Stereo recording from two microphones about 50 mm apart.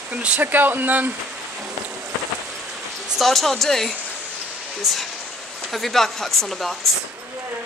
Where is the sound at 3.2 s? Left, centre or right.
Centre.